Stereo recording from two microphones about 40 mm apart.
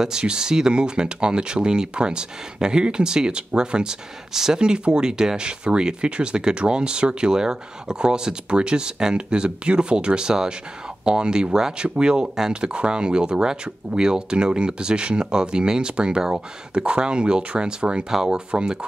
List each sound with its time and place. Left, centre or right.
0.0 s speech: centre